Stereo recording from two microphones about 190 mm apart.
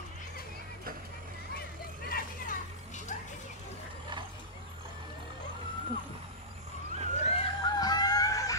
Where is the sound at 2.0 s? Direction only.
50° left (ahead or behind).